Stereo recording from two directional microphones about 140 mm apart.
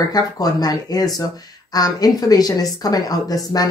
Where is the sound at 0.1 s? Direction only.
25° left (ahead or behind).